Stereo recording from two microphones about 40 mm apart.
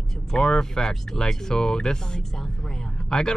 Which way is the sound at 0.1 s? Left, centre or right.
Centre.